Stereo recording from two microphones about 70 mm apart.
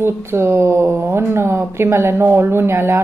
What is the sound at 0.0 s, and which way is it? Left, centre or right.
Speech, right.